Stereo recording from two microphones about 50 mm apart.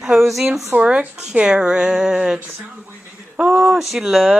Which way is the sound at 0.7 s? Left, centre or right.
Right.